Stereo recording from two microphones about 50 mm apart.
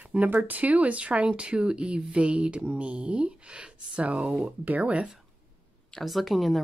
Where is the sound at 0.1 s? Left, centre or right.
Right.